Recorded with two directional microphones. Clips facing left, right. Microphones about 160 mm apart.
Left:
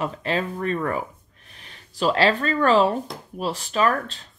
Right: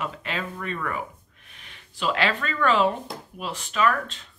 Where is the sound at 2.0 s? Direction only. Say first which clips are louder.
Left 5 dB; 35° left (ahead or behind).